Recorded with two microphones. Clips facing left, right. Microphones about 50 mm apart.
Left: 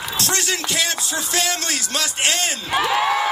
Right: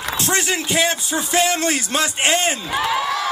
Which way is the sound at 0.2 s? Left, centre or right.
Right.